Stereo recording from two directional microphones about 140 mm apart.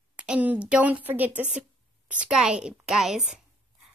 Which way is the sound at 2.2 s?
5° right (ahead or behind).